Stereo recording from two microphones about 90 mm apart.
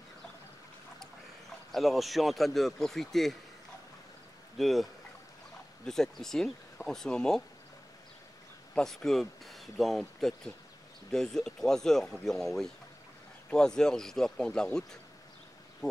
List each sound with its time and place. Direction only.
1.7 s speech: centre (ahead or behind)
4.6 s speech: centre (ahead or behind)
5.9 s speech: 5° left (ahead or behind)
8.7 s speech: 5° left (ahead or behind)